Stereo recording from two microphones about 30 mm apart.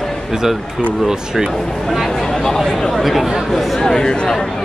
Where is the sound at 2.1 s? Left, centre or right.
Centre.